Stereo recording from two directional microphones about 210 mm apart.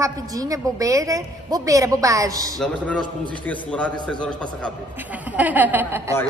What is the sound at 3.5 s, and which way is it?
A man's voice, 5° left (ahead or behind).